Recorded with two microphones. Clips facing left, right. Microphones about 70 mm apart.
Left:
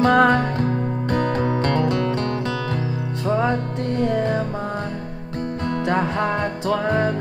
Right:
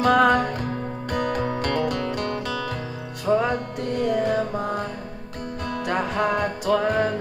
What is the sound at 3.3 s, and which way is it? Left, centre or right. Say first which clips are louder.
Music: even; left.